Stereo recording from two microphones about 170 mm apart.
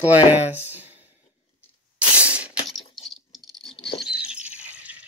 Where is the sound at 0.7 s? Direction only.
10° right (ahead or behind).